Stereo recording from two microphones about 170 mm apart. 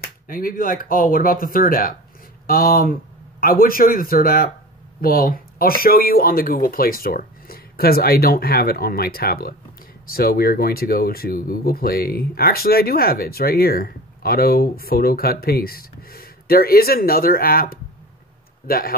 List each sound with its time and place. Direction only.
0.3 s speech: 55° left (ahead or behind)